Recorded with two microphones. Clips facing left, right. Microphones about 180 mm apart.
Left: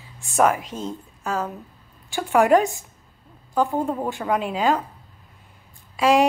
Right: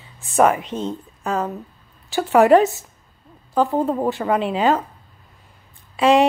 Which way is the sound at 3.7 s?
20° right (ahead or behind).